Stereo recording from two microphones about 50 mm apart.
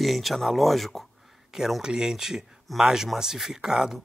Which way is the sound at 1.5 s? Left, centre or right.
Centre.